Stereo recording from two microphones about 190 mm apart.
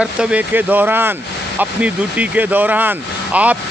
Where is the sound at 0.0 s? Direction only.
5° right (ahead or behind).